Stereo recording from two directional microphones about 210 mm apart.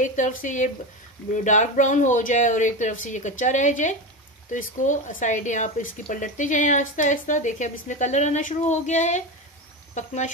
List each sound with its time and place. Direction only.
0.0 s speech: 35° left (ahead or behind)